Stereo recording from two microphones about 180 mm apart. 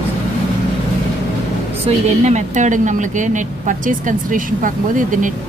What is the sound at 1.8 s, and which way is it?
A woman's voice, 40° right (ahead or behind).